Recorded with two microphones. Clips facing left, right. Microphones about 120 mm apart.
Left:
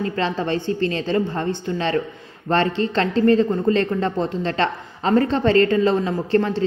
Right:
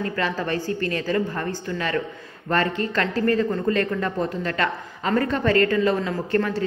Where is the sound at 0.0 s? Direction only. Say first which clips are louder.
Left 3 dB; 25° left (ahead or behind).